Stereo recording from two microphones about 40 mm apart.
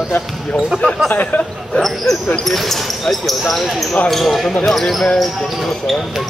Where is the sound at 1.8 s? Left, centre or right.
Centre.